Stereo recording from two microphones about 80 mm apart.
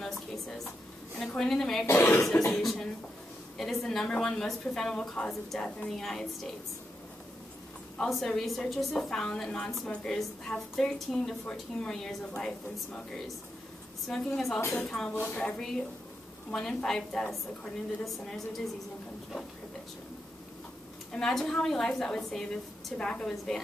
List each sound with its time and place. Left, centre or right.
0.0 s a sound: centre
1.1 s a woman's voice: centre
8.0 s a woman's voice: centre
15.1 s a woman's voice: left
15.4 s a woman's voice: centre
21.1 s speech: centre